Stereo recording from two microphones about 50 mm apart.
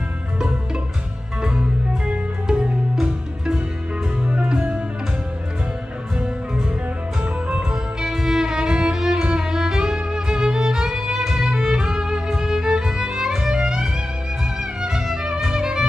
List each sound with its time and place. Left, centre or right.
1.4 s music: centre
7.7 s music: centre